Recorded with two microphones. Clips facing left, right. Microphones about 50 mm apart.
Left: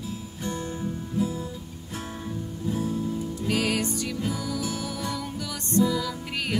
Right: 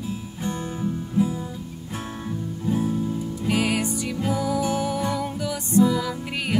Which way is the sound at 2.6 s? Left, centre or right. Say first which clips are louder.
Right 4 dB; centre.